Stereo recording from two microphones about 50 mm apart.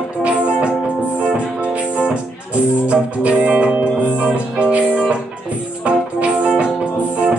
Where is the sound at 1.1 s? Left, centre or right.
Right.